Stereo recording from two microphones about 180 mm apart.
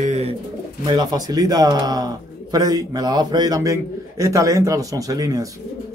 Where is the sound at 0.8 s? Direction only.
20° right (ahead or behind).